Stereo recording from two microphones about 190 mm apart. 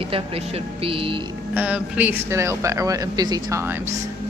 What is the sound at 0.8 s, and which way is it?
Music, 30° right (ahead or behind).